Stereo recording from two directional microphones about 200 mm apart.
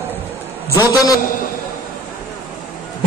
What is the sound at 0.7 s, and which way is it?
Speech, 20° left (ahead or behind).